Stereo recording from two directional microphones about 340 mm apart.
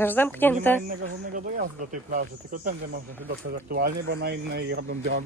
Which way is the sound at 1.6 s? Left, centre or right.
Right.